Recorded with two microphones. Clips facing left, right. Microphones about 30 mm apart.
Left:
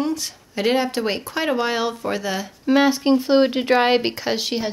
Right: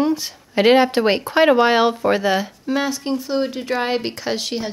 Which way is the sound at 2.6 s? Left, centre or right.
Centre.